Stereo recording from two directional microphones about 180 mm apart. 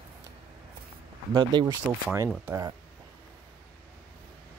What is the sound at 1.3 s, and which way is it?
Speech, 25° right (ahead or behind).